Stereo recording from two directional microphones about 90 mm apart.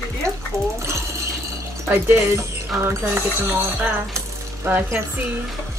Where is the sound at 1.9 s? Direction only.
30° right (ahead or behind).